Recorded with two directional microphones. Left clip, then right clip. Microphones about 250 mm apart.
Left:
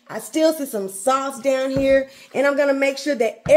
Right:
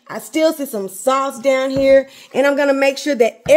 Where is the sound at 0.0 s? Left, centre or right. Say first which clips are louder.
Right 2 dB; right.